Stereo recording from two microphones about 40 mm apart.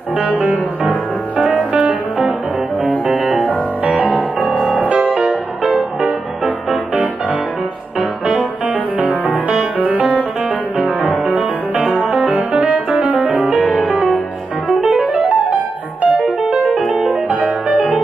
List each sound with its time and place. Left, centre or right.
1.4 s music: right
2.8 s music: right
9.0 s music: right
11.2 s music: right